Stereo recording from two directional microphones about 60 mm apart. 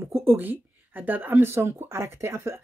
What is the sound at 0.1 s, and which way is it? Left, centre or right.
Speech, right.